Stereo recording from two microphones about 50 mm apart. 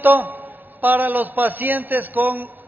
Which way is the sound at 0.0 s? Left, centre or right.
Right.